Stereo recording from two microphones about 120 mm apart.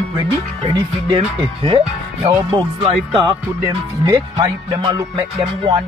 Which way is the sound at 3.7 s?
35° right (ahead or behind).